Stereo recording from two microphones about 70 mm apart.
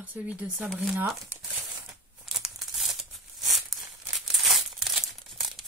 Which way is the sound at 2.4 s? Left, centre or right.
Centre.